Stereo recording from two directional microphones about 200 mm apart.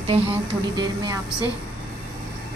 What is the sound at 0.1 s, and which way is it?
Speech, 25° right (ahead or behind).